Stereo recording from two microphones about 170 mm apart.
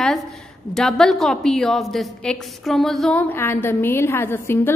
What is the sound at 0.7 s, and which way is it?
A woman's voice, centre (ahead or behind).